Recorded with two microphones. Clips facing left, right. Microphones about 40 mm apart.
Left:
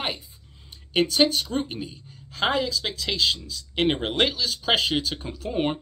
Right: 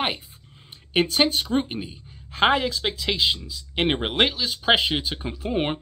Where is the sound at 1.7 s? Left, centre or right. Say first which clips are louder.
Right 2 dB; centre.